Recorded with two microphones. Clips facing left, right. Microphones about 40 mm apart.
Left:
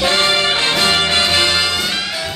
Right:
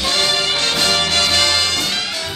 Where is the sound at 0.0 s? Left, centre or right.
Left.